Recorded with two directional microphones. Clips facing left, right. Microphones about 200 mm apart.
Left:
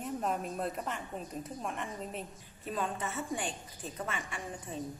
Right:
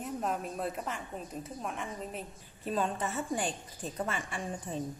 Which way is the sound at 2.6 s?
35° right (ahead or behind).